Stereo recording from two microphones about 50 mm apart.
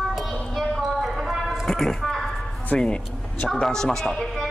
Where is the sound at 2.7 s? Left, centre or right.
Left.